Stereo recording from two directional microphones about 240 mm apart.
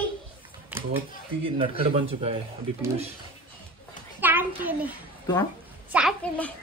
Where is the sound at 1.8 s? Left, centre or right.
Right.